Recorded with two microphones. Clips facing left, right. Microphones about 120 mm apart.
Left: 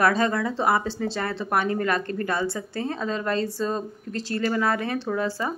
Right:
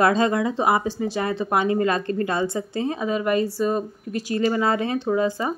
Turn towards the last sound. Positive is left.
turn(degrees=-15)  # may be behind; listen again after turning